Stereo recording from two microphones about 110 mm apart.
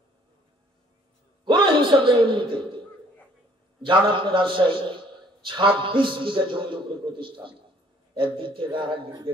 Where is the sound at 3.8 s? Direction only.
50° right (ahead or behind).